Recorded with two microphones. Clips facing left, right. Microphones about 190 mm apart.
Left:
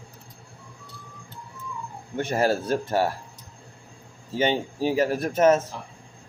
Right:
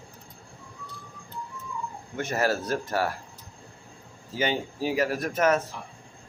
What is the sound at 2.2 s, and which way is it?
Speech, 30° left (ahead or behind).